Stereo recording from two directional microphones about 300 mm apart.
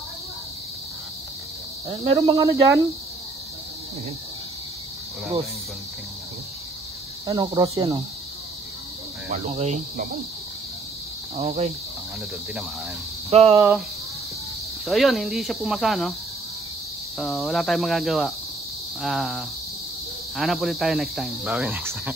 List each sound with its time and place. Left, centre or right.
1.9 s speech: centre
7.2 s speech: centre
9.3 s speech: right
11.3 s speech: right
13.3 s speech: centre
13.6 s speech: centre
14.9 s cricket: centre
17.2 s cricket: centre